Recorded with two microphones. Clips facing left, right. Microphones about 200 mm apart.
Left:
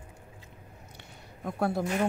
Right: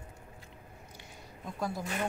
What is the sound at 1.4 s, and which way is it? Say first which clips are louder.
Speech: left 7 dB; 65° left (ahead or behind).